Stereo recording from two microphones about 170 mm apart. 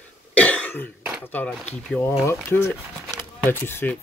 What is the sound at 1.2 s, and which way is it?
Speech, 10° left (ahead or behind).